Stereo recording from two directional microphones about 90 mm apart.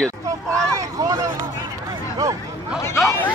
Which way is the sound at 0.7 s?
35° right (ahead or behind).